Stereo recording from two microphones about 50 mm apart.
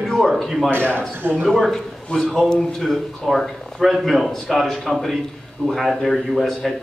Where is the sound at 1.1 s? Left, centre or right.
Right.